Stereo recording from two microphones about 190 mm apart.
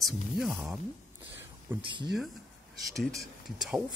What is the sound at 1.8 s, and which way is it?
Speech, 25° right (ahead or behind).